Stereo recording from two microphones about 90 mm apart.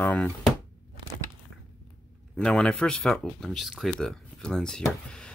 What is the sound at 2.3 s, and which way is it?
Speech, 10° left (ahead or behind).